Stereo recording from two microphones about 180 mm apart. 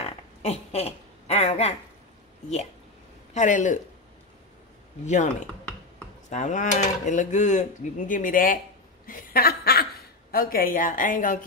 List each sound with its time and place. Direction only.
0.0 s a sound: 35° left (ahead or behind)
3.3 s speech: 45° left (ahead or behind)
5.0 s speech: 40° left (ahead or behind)
6.3 s speech: 45° left (ahead or behind)
9.0 s chuckle: 55° left (ahead or behind)
10.3 s speech: 55° left (ahead or behind)